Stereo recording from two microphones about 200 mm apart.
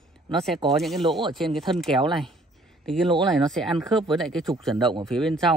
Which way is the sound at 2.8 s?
5° left (ahead or behind).